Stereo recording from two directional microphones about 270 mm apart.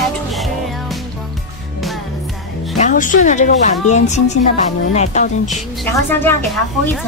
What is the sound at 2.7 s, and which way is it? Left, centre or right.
A woman's voice, left.